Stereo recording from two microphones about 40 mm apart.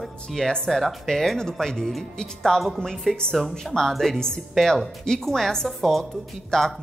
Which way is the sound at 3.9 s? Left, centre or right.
Centre.